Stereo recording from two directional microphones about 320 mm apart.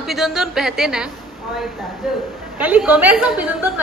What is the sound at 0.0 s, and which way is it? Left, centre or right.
A woman's voice, centre.